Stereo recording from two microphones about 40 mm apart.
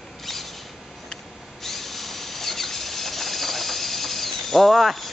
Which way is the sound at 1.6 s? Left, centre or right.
Centre.